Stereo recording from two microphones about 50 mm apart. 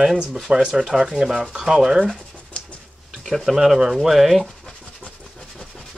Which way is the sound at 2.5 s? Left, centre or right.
Left.